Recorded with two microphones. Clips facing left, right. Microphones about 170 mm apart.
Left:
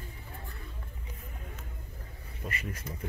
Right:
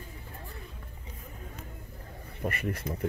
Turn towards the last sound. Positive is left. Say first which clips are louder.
# right 7 dB
turn(degrees=-65)  # may be behind; listen again after turning